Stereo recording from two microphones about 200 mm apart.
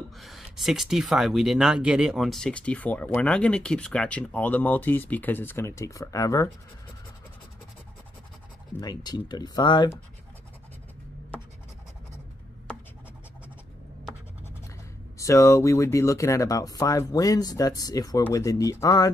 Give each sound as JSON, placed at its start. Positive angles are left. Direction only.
{"t": 0.2, "sound": "speech", "side_deg": 0}
{"t": 8.8, "sound": "speech", "side_deg": 20}
{"t": 15.1, "sound": "speech", "side_deg": 15}